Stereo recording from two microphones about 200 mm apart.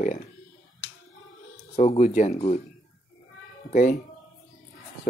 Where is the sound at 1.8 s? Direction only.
35° left (ahead or behind).